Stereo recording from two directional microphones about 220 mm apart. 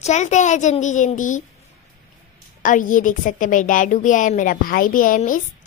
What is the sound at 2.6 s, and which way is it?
A woman's voice, 35° left (ahead or behind).